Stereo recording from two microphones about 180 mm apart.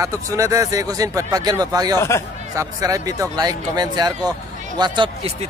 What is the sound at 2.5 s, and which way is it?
Speech, 20° right (ahead or behind).